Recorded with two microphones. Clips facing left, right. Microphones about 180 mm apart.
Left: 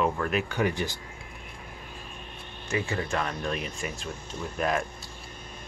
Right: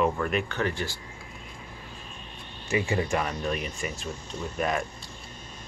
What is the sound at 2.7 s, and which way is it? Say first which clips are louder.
Speech: right 3 dB; 15° right (ahead or behind).